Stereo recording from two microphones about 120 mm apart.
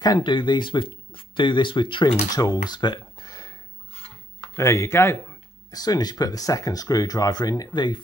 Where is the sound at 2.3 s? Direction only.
30° left (ahead or behind).